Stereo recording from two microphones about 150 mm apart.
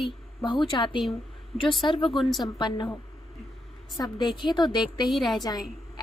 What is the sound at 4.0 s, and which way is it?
A woman's voice, 25° left (ahead or behind).